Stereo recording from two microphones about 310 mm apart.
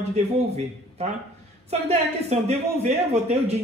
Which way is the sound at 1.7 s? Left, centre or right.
Right.